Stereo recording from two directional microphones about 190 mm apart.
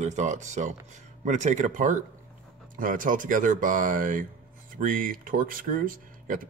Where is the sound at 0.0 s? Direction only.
40° right (ahead or behind).